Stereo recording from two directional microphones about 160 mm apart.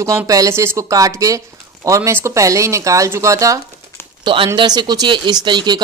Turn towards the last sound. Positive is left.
turn(degrees=-25)  # may be behind; listen again after turning